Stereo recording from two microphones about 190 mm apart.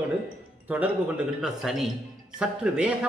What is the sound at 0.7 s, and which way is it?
Speech, 5° right (ahead or behind).